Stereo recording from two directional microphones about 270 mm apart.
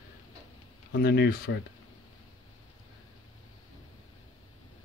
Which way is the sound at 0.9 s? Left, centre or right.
Left.